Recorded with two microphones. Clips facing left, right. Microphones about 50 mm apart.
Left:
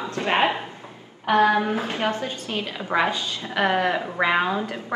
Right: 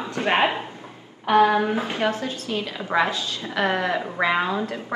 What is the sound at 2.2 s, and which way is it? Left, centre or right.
A woman's voice, left.